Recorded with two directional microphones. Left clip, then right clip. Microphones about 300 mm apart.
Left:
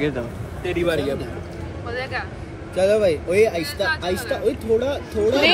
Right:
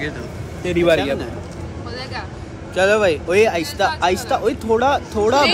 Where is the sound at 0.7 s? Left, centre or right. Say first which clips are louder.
Right 6 dB; right.